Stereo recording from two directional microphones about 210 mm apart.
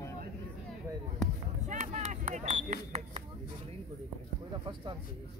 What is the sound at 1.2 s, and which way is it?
Basketball bounce, centre (ahead or behind).